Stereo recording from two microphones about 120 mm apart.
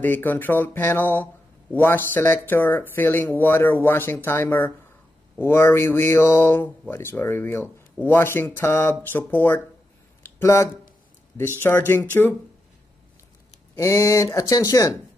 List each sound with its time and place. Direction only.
0.0 s speech: 15° left (ahead or behind)
10.2 s a sound: 25° left (ahead or behind)
11.6 s speech: 20° left (ahead or behind)
13.7 s speech: 25° left (ahead or behind)